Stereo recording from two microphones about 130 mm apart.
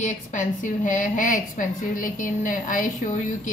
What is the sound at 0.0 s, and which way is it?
A woman's voice, 75° left (ahead or behind).